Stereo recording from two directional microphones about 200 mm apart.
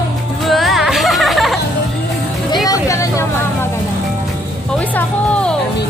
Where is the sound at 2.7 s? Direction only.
15° left (ahead or behind).